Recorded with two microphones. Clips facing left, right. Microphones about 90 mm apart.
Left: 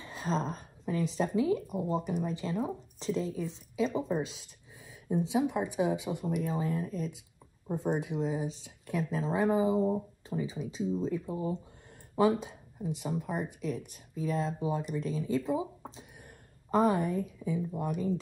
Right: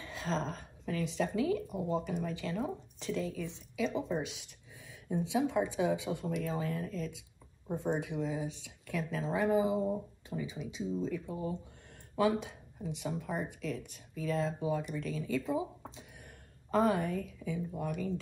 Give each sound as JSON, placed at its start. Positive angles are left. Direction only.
{"t": 0.0, "sound": "a sound", "side_deg": 20}
{"t": 1.1, "sound": "speech", "side_deg": 25}
{"t": 5.1, "sound": "speech", "side_deg": 20}
{"t": 11.0, "sound": "speech", "side_deg": 20}
{"t": 15.8, "sound": "a sound", "side_deg": 20}
{"t": 16.7, "sound": "speech", "side_deg": 20}